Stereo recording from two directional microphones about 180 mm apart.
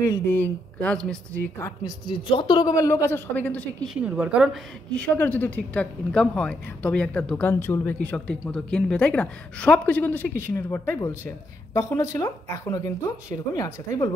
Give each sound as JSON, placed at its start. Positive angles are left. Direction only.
{"t": 0.0, "sound": "speech", "side_deg": 15}
{"t": 1.8, "sound": "speech", "side_deg": 25}
{"t": 4.9, "sound": "speech", "side_deg": 10}